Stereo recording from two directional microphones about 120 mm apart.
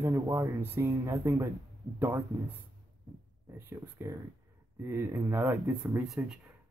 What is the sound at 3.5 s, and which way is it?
Speech, 20° right (ahead or behind).